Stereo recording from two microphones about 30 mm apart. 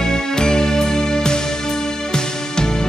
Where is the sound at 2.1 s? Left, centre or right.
Left.